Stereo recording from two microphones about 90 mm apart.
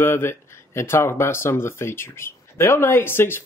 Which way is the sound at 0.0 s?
25° left (ahead or behind).